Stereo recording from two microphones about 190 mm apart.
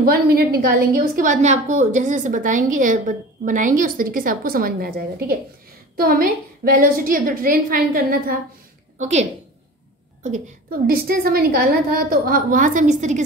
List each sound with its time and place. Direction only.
0.0 s a woman's voice: 50° right (ahead or behind)
8.9 s a woman's voice: 35° right (ahead or behind)